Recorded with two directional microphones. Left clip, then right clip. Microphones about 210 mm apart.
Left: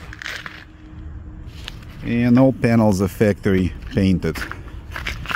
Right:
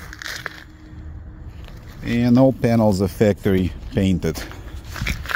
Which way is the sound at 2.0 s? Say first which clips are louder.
Even; centre (ahead or behind).